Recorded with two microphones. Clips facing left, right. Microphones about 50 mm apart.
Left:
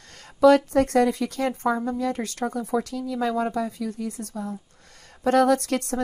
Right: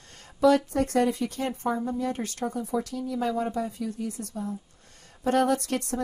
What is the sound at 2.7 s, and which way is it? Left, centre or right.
Speech, left.